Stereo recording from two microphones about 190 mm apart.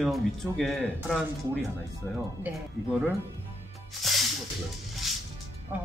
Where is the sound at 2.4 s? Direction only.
10° right (ahead or behind).